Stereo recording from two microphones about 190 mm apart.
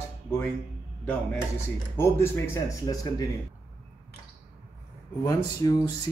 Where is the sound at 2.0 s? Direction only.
15° left (ahead or behind).